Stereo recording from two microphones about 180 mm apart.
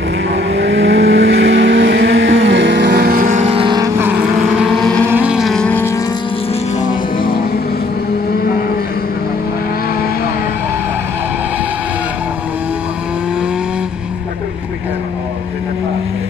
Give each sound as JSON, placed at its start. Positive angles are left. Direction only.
{"t": 0.3, "sound": "vehicle", "side_deg": -75}
{"t": 3.4, "sound": "vehicle", "side_deg": -30}
{"t": 4.0, "sound": "vehicle", "side_deg": -10}
{"t": 4.6, "sound": "vehicle", "side_deg": 5}
{"t": 5.1, "sound": "vehicle", "side_deg": -5}